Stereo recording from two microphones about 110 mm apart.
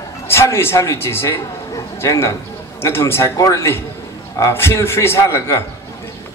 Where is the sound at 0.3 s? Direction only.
25° left (ahead or behind).